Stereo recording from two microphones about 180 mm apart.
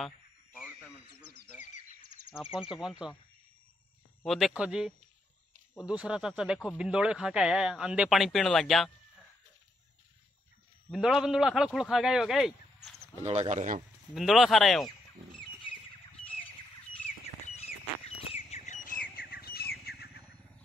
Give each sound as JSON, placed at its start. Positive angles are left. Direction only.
{"t": 0.0, "sound": "radio", "side_deg": 0}
{"t": 2.3, "sound": "speech", "side_deg": -5}
{"t": 4.2, "sound": "speech", "side_deg": 0}
{"t": 10.9, "sound": "speech", "side_deg": -5}
{"t": 13.2, "sound": "speech", "side_deg": -40}
{"t": 14.1, "sound": "speech", "side_deg": 0}
{"t": 14.9, "sound": "a sound", "side_deg": 25}
{"t": 17.6, "sound": "chirp", "side_deg": 35}
{"t": 19.3, "sound": "squawk", "side_deg": 60}
{"t": 19.8, "sound": "a sound", "side_deg": 60}